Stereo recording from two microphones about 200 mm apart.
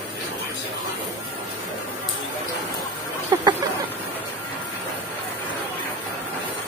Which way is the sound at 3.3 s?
20° right (ahead or behind).